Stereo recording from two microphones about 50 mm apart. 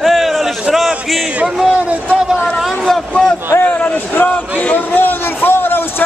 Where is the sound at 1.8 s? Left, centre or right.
Right.